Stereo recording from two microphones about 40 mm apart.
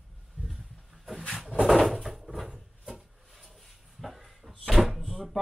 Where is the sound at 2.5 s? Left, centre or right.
Centre.